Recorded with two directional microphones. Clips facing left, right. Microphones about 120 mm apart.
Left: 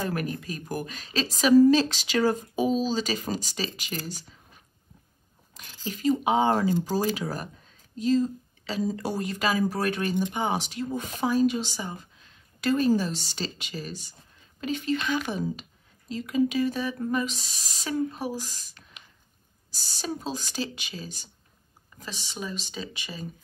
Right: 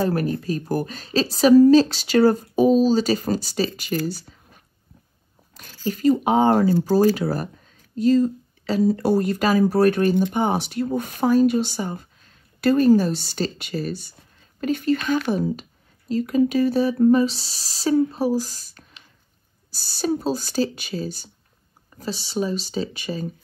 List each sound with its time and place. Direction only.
0.0 s a woman's voice: 35° right (ahead or behind)
5.5 s a sound: 45° right (ahead or behind)
5.9 s a woman's voice: 45° right (ahead or behind)